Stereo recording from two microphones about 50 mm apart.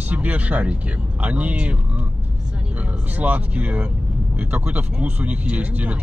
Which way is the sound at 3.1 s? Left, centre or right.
Right.